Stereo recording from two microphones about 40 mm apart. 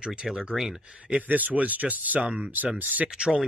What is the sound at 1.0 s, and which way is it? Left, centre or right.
Speech, right.